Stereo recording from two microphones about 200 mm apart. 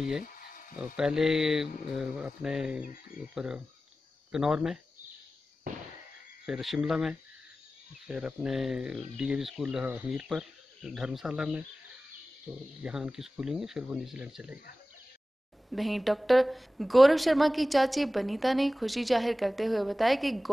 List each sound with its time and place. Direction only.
0.2 s a sound: 45° left (ahead or behind)
0.7 s a woman's voice: 5° right (ahead or behind)
6.4 s a woman's voice: centre (ahead or behind)
12.8 s a woman's voice: 5° right (ahead or behind)
15.7 s a woman's voice: centre (ahead or behind)